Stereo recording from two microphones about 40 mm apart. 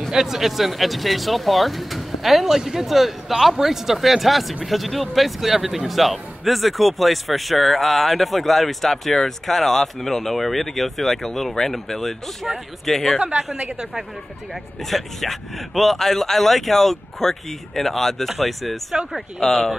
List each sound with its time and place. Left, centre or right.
0.1 s speech: centre
13.4 s a woman's voice: right
14.5 s speech: centre